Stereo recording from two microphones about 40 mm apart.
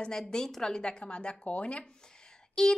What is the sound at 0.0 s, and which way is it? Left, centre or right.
Speech, centre.